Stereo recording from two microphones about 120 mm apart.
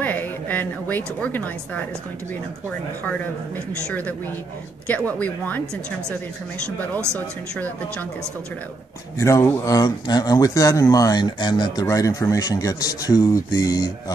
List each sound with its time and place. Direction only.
0.0 s a woman's voice: 15° left (ahead or behind)
3.0 s a woman's voice: 15° left (ahead or behind)
4.8 s a woman's voice: 10° left (ahead or behind)
7.2 s a woman's voice: 15° left (ahead or behind)
9.2 s speech: 25° left (ahead or behind)